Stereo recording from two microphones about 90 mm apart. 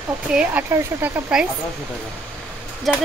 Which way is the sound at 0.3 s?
10° right (ahead or behind).